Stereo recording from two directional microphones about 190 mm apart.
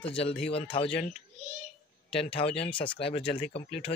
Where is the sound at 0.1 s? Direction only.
30° left (ahead or behind).